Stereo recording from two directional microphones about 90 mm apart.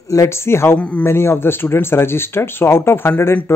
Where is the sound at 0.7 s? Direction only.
15° left (ahead or behind).